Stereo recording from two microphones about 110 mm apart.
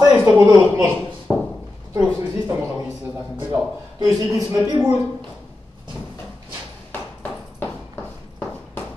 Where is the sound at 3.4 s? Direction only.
20° right (ahead or behind).